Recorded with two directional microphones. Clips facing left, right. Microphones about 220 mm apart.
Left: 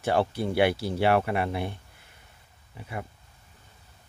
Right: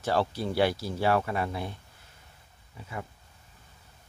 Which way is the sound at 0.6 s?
65° left (ahead or behind).